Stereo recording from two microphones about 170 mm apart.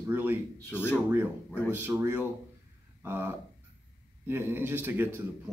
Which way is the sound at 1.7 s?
15° right (ahead or behind).